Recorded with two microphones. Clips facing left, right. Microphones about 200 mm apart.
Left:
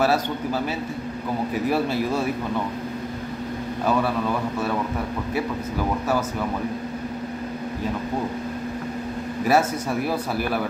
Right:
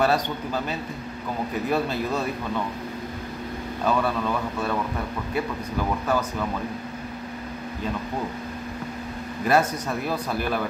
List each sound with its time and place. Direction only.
0.0 s a man's voice: 5° left (ahead or behind)
9.5 s speech: 10° left (ahead or behind)